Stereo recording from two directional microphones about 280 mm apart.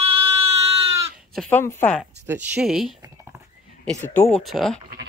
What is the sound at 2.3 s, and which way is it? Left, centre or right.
Speech, centre.